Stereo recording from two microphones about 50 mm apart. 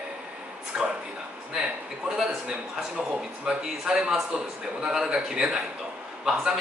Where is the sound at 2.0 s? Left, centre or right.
Centre.